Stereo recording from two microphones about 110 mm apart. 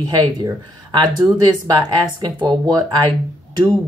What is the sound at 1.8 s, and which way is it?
Speech, 45° right (ahead or behind).